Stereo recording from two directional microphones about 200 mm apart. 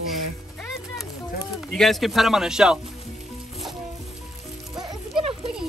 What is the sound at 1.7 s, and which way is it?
Speech, centre (ahead or behind).